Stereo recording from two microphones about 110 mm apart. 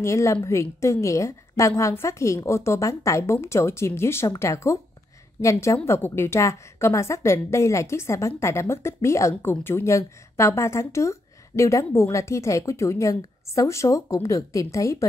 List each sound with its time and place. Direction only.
0.0 s a woman's voice: 25° left (ahead or behind)